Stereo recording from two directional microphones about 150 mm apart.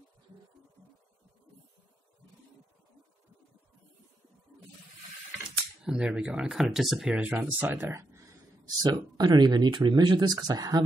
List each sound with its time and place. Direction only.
5.9 s speech: 5° right (ahead or behind); by 10.8 s 25° right (ahead or behind)